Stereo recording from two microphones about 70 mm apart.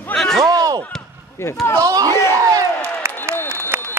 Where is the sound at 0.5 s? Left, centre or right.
Right.